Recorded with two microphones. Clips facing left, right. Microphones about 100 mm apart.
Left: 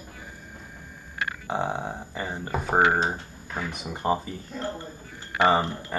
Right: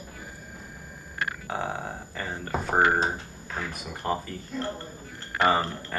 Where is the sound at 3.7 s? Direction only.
20° left (ahead or behind).